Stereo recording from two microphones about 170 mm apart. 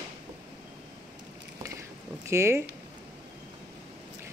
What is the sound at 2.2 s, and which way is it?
Speech, 15° right (ahead or behind).